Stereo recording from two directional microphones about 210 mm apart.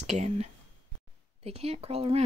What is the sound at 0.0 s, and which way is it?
Speech, 30° right (ahead or behind).